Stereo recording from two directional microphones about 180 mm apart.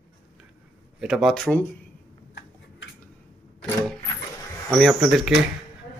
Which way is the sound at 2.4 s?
80° left.